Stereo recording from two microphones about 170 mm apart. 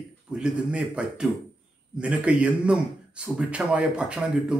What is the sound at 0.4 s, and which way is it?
A man's voice, 5° right (ahead or behind).